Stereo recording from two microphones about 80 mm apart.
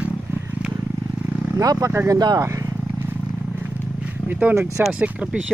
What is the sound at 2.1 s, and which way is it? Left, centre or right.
Speech, right.